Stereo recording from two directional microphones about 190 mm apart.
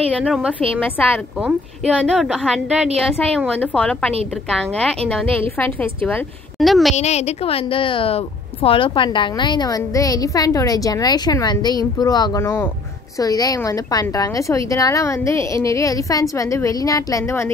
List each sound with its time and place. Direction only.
0.2 s a woman's voice: 5° right (ahead or behind)
0.7 s a woman's voice: 10° left (ahead or behind)
7.0 s a woman's voice: 35° left (ahead or behind); by 17.5 s 15° left (ahead or behind)